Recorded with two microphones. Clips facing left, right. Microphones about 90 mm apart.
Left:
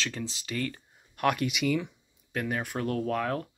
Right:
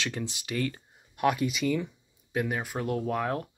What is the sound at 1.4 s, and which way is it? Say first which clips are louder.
Speech: even; centre (ahead or behind).